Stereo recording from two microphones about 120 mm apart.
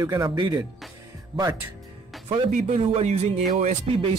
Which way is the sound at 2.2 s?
65° right (ahead or behind).